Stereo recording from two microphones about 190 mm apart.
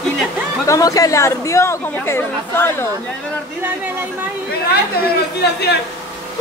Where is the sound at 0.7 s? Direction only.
20° left (ahead or behind).